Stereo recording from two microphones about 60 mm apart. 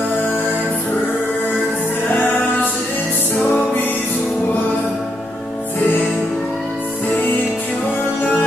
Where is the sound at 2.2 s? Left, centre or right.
Left.